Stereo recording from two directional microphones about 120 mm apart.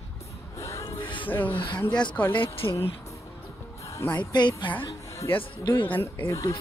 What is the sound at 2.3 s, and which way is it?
Speech, 45° left (ahead or behind).